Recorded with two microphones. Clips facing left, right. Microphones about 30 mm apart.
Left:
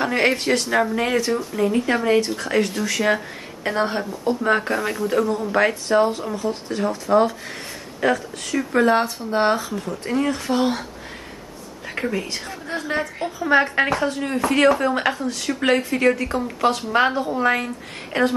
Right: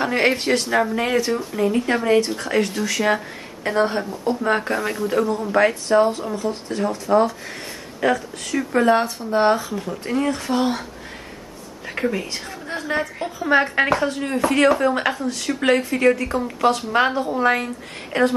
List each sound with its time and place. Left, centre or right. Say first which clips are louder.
0.0 s speech: even; centre
9.7 s speech: even; centre
10.0 s speech: even; centre